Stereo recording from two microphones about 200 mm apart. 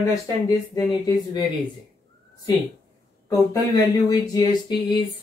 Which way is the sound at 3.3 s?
20° left (ahead or behind).